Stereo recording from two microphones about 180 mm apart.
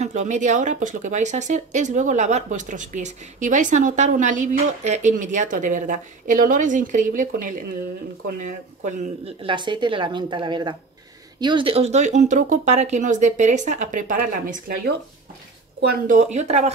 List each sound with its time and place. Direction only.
0.0 s speech: 40° right (ahead or behind)
16.1 s speech: 40° right (ahead or behind)